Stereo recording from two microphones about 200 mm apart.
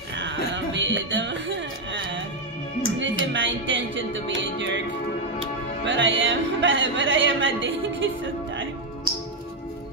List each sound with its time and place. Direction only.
0.7 s music: 65° right (ahead or behind)
3.0 s speech: 65° right (ahead or behind)
5.9 s speech: 65° right (ahead or behind)